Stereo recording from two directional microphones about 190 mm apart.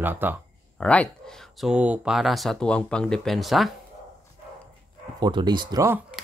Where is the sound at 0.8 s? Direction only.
5° left (ahead or behind).